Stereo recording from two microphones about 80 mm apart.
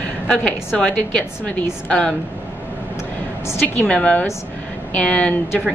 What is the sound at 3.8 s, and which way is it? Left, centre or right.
A woman's voice, centre.